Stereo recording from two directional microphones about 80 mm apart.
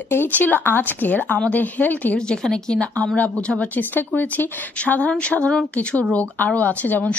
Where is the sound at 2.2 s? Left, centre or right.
Centre.